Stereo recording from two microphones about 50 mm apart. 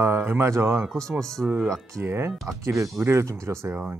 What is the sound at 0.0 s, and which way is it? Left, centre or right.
Speech, right.